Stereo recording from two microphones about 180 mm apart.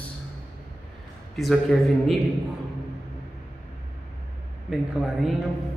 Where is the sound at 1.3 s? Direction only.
Centre (ahead or behind).